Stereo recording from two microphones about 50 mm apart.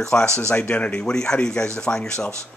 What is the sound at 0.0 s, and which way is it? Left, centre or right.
Speech, centre.